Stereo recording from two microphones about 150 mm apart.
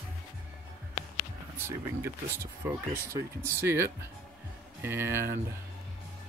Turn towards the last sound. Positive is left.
turn(degrees=-15)  # may be behind; listen again after turning